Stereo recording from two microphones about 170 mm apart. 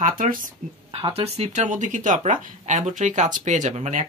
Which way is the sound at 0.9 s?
35° right (ahead or behind).